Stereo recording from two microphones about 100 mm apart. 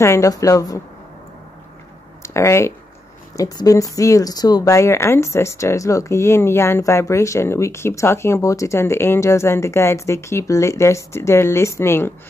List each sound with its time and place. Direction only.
0.0 s a woman's voice: 30° left (ahead or behind)
2.2 s speech: 30° left (ahead or behind)